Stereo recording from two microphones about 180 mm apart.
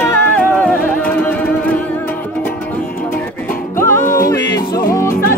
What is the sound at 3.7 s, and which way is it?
Music, 15° left (ahead or behind).